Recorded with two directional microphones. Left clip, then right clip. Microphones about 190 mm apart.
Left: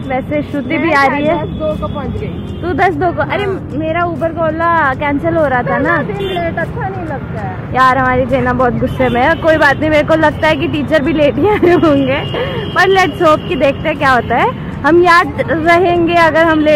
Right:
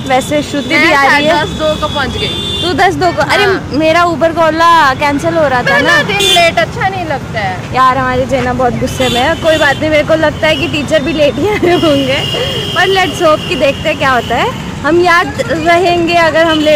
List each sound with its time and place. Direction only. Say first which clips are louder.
0.1 s speech: right 5 dB; 20° right (ahead or behind)
2.6 s speech: right 2 dB; 20° right (ahead or behind)
7.7 s speech: even; 15° right (ahead or behind)